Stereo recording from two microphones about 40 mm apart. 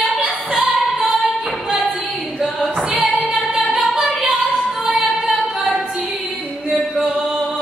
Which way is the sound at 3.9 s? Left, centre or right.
Centre.